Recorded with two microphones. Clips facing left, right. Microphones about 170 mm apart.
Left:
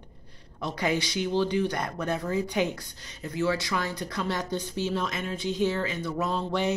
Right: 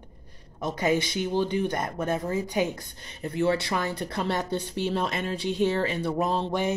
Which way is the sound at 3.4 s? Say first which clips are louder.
Right 2 dB; 60° right (ahead or behind).